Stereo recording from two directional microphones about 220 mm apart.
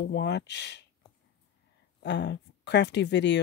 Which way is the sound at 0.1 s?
50° left (ahead or behind).